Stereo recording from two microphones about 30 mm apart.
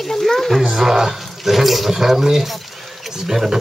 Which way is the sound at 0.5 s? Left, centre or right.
Centre.